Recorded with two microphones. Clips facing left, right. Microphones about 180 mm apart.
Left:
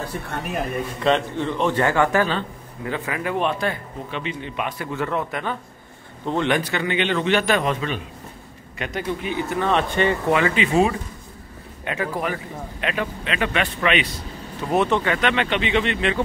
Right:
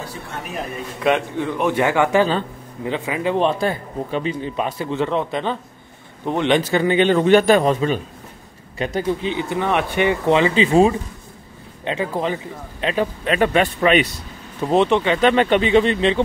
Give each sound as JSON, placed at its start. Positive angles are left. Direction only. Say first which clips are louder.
{"t": 1.0, "sound": "a man's voice", "louder": "right 2 dB", "side_deg": -10}
{"t": 6.7, "sound": "a man's voice", "louder": "right 7 dB", "side_deg": -40}
{"t": 13.2, "sound": "a man's voice", "louder": "right 8 dB", "side_deg": -45}
{"t": 14.7, "sound": "speech", "louder": "right 4 dB", "side_deg": -20}
{"t": 15.1, "sound": "a man's voice", "louder": "right 7 dB", "side_deg": -40}